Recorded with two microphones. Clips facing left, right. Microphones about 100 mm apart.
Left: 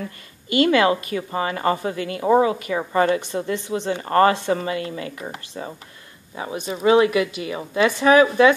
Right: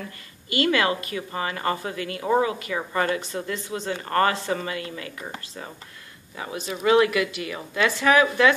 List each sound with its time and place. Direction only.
0.5 s a woman's voice: 25° left (ahead or behind)
5.2 s a woman's voice: 15° left (ahead or behind)